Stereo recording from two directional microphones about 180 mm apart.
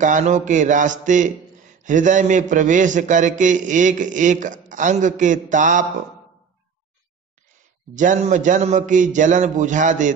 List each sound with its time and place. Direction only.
0.0 s a man's voice: 45° right (ahead or behind)
7.9 s a man's voice: 45° right (ahead or behind)